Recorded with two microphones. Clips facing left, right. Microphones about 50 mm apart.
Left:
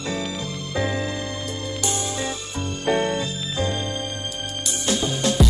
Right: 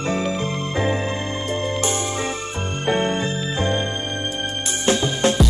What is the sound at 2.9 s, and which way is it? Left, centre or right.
Music, right.